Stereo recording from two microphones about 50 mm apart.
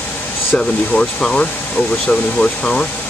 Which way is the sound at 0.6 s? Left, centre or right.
Centre.